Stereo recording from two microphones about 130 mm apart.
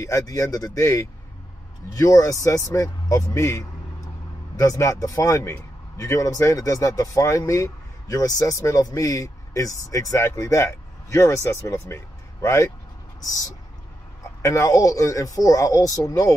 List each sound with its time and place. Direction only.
0.0 s a man's voice: 25° left (ahead or behind)
14.4 s a man's voice: 25° left (ahead or behind)